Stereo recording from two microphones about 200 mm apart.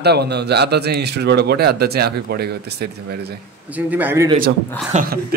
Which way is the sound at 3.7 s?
10° right (ahead or behind).